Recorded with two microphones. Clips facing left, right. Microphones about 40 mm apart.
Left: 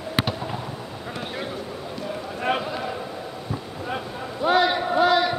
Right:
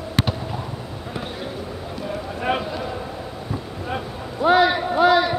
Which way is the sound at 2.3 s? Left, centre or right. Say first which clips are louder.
Right 1 dB; centre.